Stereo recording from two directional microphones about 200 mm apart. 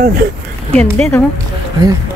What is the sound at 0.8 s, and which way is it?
Speech, 5° left (ahead or behind).